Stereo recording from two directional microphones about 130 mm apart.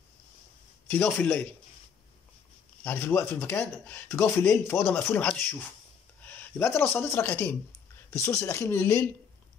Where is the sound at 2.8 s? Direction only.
15° left (ahead or behind).